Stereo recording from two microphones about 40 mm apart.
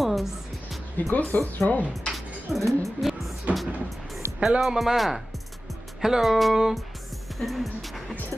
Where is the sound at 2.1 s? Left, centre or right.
Centre.